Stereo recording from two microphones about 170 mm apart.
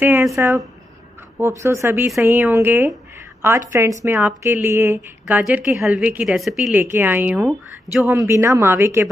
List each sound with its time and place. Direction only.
0.0 s a woman's voice: 15° right (ahead or behind)
8.1 s a woman's voice: 15° right (ahead or behind)